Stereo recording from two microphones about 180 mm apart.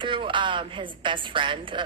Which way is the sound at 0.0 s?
25° right (ahead or behind).